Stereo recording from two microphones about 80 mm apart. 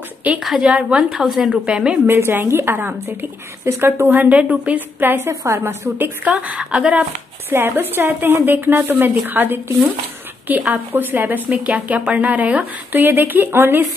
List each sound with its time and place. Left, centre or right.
0.4 s a woman's voice: centre
2.0 s a woman's voice: right
6.2 s a woman's voice: centre
7.4 s a woman's voice: right